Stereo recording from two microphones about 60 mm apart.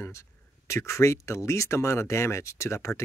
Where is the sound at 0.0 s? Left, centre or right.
Left.